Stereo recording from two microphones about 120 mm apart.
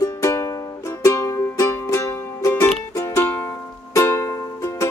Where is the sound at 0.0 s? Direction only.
25° left (ahead or behind).